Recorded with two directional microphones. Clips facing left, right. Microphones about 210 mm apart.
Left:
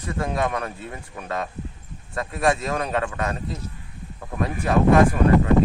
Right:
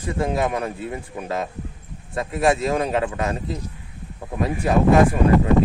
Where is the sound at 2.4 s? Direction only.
25° right (ahead or behind).